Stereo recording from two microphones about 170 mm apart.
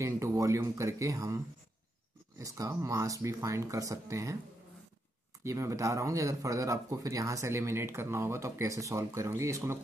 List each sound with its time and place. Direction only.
0.0 s speech: 20° right (ahead or behind)
5.4 s speech: 15° right (ahead or behind)